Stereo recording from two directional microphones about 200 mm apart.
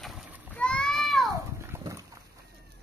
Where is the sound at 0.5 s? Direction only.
5° left (ahead or behind).